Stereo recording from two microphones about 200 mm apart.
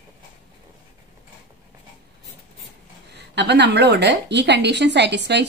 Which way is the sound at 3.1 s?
60° right (ahead or behind).